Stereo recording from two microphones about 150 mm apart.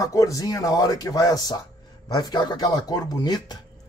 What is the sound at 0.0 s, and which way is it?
A man's voice, 20° left (ahead or behind).